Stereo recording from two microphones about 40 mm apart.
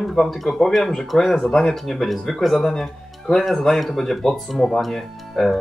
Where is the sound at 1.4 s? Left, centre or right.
Centre.